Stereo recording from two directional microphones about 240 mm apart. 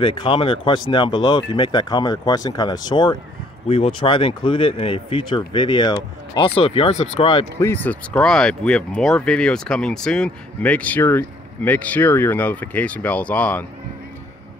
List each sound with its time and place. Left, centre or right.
0.0 s speech: left
7.5 s speech: centre